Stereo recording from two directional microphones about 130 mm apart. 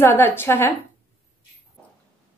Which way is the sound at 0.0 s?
15° left (ahead or behind).